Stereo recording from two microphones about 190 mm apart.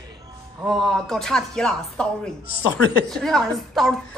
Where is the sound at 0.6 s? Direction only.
Centre (ahead or behind).